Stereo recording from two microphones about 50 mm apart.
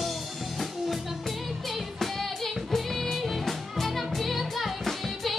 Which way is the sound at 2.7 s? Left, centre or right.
Centre.